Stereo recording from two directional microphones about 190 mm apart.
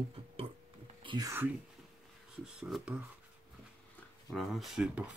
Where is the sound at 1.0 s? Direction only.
20° right (ahead or behind).